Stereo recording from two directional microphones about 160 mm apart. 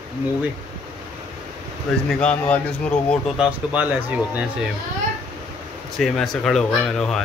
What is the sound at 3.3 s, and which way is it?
Speech, 10° right (ahead or behind).